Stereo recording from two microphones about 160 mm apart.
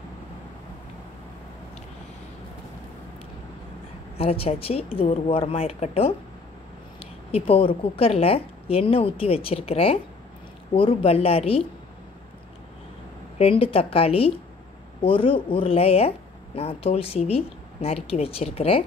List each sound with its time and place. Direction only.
4.2 s a woman's voice: 35° left (ahead or behind)
13.4 s a woman's voice: 35° left (ahead or behind)